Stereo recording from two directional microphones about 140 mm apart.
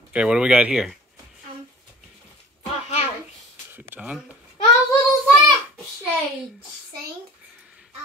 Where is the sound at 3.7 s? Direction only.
15° right (ahead or behind).